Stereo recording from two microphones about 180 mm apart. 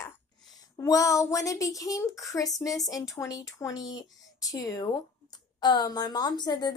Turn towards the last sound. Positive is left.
turn(degrees=25)  # may be behind; listen again after turning